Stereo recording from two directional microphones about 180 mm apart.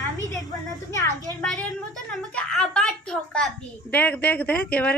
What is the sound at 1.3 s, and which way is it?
A woman's voice, 5° left (ahead or behind).